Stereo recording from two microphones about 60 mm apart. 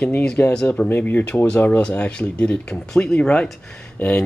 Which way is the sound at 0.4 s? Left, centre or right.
Left.